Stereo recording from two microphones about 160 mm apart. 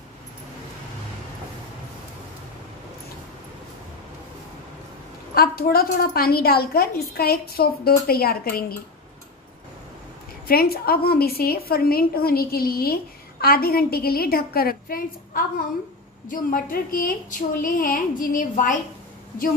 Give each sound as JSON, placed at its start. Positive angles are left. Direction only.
{"t": 5.3, "sound": "a woman's voice", "side_deg": 70}
{"t": 10.5, "sound": "a woman's voice", "side_deg": 70}